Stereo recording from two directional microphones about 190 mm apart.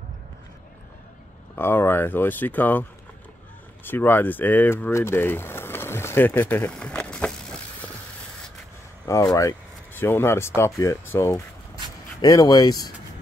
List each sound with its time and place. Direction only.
1.5 s speech: 10° left (ahead or behind)
3.8 s speech: 10° left (ahead or behind)
9.0 s speech: 15° left (ahead or behind)